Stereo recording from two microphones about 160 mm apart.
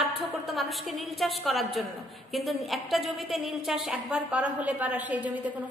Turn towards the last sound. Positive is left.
turn(degrees=-10)  # may be behind; listen again after turning